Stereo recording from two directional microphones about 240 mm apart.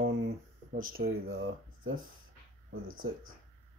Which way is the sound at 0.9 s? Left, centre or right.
Right.